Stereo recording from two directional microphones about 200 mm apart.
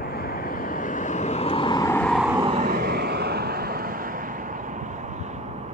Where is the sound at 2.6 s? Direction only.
50° right (ahead or behind).